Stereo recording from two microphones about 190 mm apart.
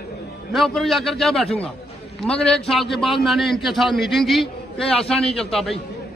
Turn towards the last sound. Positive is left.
turn(degrees=0)  # may be behind; listen again after turning